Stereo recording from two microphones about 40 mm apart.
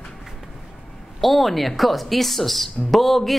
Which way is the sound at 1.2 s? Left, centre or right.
Centre.